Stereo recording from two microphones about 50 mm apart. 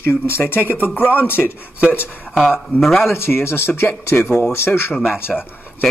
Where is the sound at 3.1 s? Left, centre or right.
Left.